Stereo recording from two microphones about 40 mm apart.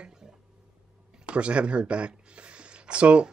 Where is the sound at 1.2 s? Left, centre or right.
Right.